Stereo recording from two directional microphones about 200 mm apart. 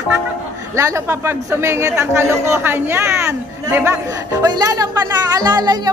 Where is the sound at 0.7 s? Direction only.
15° right (ahead or behind).